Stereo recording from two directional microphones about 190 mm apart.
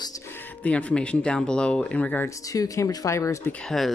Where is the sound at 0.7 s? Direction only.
5° left (ahead or behind).